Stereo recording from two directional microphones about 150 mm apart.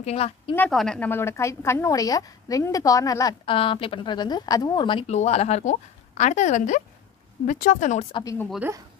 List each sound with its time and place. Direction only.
0.0 s a woman's voice: 45° left (ahead or behind)
0.6 s a woman's voice: 5° left (ahead or behind); by 3.3 s 20° left (ahead or behind)
3.4 s a woman's voice: 35° left (ahead or behind)
5.1 s speech: 45° left (ahead or behind)
8.2 s a woman's voice: 20° left (ahead or behind)